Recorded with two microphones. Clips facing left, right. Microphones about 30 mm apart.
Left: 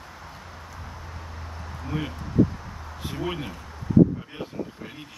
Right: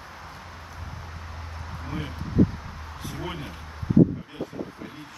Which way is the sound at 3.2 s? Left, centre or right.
Centre.